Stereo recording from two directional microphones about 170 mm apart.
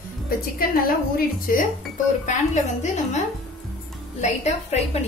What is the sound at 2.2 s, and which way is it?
A woman's voice, 45° left (ahead or behind).